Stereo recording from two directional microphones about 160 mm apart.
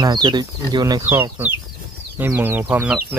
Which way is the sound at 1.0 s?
15° right (ahead or behind).